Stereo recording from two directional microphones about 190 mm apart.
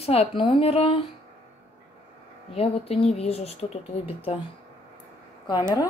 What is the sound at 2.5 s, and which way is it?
Speech, 30° left (ahead or behind).